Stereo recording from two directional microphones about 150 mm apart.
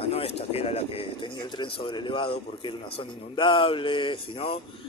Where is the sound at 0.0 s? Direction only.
40° left (ahead or behind).